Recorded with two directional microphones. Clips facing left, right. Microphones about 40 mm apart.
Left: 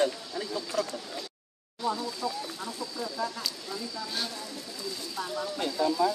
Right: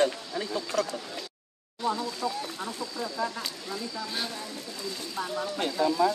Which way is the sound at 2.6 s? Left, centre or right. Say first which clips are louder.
Right 2 dB; right.